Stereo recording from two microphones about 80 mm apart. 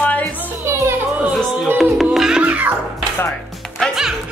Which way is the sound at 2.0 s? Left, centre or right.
Centre.